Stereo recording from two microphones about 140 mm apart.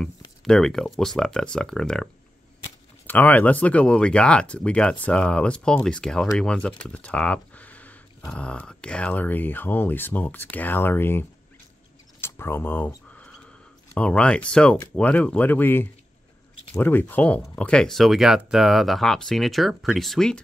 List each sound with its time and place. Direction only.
0.0 s speech: 5° left (ahead or behind)
3.1 s speech: 10° left (ahead or behind)
6.8 s a sound: 10° left (ahead or behind)
8.3 s speech: 10° left (ahead or behind)
12.2 s a sound: 15° left (ahead or behind)
13.9 s speech: 10° left (ahead or behind)